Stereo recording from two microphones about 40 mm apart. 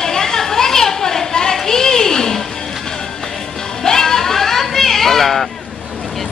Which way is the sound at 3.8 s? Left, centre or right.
Centre.